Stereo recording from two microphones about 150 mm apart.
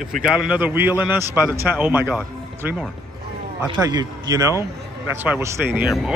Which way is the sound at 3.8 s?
25° right (ahead or behind).